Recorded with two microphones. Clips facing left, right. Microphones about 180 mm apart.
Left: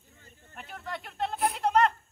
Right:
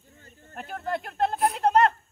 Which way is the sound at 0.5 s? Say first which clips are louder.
Right 8 dB; 45° right (ahead or behind).